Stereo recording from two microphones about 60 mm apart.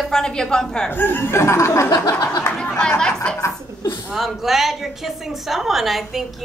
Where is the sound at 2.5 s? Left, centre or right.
Centre.